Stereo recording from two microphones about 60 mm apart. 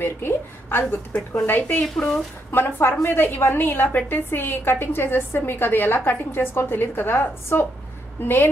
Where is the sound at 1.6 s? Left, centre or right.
Left.